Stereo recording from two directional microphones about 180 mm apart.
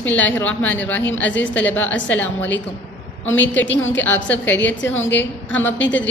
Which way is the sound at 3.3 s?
90° left.